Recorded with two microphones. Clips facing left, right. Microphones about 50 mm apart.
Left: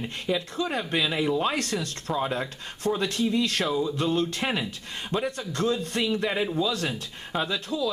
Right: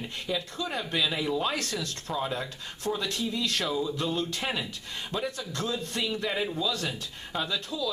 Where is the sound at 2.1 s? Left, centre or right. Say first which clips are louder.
Left 4 dB; centre.